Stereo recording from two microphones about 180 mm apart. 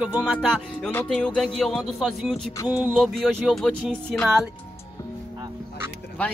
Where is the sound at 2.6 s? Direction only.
10° right (ahead or behind).